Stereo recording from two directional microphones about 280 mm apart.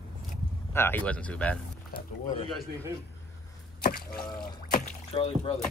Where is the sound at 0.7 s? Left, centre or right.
Centre.